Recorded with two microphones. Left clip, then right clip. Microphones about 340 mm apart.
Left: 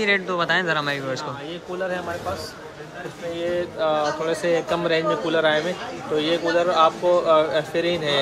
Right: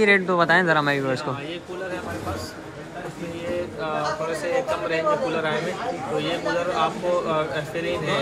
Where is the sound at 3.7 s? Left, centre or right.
Left.